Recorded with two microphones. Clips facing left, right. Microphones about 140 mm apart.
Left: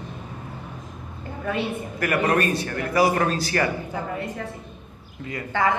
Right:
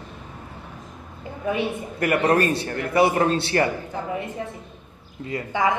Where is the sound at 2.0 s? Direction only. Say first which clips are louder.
Right 2 dB; 30° right (ahead or behind).